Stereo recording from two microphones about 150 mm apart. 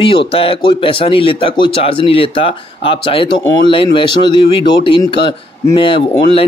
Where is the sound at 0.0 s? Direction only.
40° left (ahead or behind).